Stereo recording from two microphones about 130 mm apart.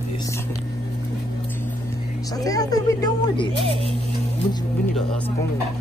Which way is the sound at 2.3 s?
30° left (ahead or behind).